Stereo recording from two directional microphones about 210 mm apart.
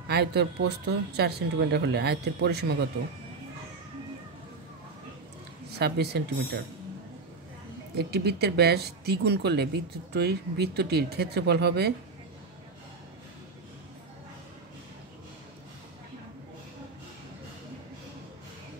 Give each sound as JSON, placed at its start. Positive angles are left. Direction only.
{"t": 0.1, "sound": "a woman's voice", "side_deg": -50}
{"t": 5.8, "sound": "a woman's voice", "side_deg": -50}
{"t": 7.9, "sound": "a woman's voice", "side_deg": -50}